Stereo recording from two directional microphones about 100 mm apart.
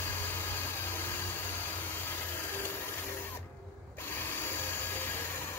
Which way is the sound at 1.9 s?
25° left (ahead or behind).